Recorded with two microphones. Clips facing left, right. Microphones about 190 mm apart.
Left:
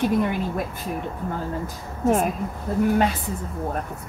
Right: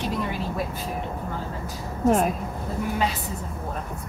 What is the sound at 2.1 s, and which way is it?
Speech, centre (ahead or behind).